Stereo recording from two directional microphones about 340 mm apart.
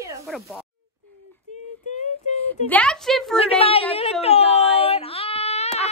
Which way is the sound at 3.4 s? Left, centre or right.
Centre.